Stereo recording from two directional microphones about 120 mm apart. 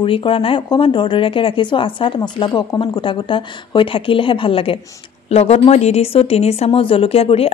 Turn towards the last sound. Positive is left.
turn(degrees=55)  # may be behind; listen again after turning